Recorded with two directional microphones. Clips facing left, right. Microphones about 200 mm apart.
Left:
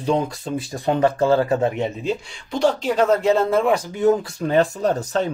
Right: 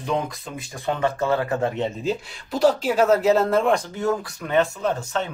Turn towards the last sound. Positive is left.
turn(degrees=40)  # may be behind; listen again after turning